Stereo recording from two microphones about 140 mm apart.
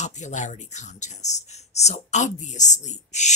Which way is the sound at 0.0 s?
60° left (ahead or behind).